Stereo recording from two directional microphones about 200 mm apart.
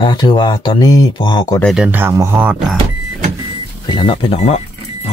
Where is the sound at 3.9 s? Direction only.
25° left (ahead or behind).